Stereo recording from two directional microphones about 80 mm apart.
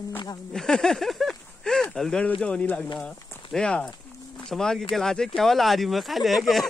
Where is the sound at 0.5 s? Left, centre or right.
Centre.